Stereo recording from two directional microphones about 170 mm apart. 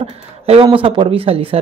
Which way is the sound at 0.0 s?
35° right (ahead or behind).